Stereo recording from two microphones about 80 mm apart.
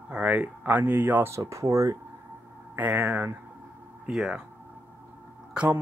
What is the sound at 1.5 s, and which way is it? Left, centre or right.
Speech, right.